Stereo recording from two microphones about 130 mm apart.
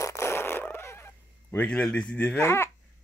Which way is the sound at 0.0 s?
25° left (ahead or behind).